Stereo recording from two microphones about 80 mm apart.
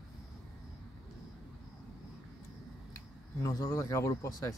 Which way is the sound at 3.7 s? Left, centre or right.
Left.